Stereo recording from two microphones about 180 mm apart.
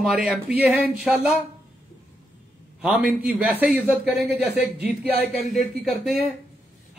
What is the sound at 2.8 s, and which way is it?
A man's voice, 5° right (ahead or behind).